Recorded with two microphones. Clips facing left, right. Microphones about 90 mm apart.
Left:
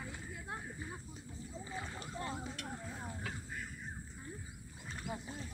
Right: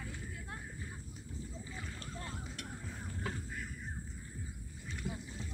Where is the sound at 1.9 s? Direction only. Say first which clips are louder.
Left 4 dB; 20° left (ahead or behind).